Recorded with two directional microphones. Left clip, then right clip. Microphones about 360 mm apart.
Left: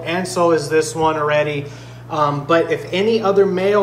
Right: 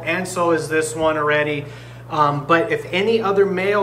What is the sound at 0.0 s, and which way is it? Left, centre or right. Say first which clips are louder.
A man's voice: left 3 dB; centre.